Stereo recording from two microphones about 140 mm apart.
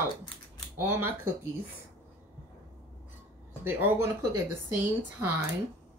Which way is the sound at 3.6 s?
15° right (ahead or behind).